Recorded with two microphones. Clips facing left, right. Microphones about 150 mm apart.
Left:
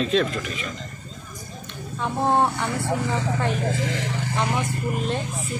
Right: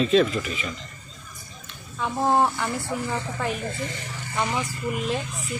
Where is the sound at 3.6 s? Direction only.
90° left.